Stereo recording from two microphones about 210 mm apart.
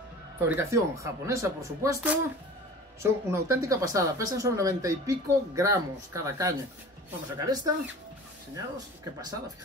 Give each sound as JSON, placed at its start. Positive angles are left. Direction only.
{"t": 0.4, "sound": "speech", "side_deg": -10}